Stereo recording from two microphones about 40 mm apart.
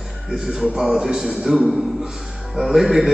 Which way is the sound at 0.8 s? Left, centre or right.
Centre.